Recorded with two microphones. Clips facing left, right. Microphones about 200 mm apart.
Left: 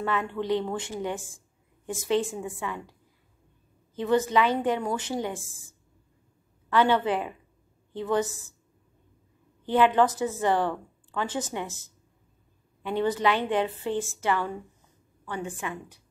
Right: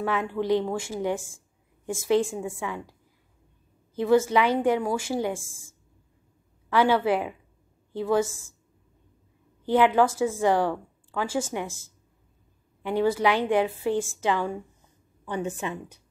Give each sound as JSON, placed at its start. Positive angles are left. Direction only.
{"t": 0.0, "sound": "a woman's voice", "side_deg": -10}
{"t": 6.7, "sound": "a woman's voice", "side_deg": -10}
{"t": 9.7, "sound": "a woman's voice", "side_deg": -10}